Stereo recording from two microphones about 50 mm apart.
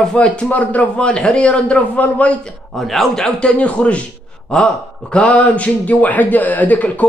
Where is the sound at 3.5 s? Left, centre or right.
Left.